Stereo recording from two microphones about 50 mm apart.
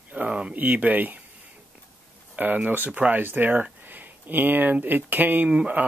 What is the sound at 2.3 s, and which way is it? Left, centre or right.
Speech, right.